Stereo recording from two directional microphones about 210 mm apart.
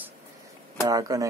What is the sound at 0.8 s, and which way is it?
Speech, 15° right (ahead or behind).